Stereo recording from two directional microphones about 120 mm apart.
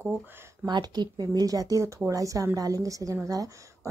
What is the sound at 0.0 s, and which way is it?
Speech, 20° right (ahead or behind).